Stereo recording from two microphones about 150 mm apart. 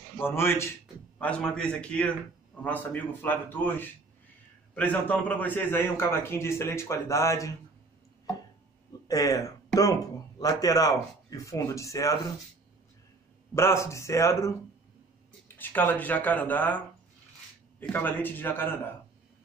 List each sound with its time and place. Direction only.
0.2 s a man's voice: 15° left (ahead or behind)
9.0 s speech: 25° left (ahead or behind)
13.6 s a man's voice: 20° left (ahead or behind)